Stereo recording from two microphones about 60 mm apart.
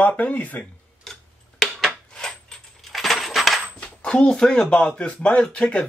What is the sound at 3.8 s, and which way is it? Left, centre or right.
Speech, centre.